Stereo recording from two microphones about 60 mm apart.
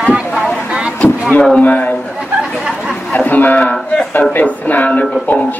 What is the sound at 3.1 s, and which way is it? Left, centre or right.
Speech, left.